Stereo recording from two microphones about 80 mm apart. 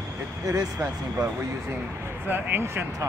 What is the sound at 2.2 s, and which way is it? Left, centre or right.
Speech, right.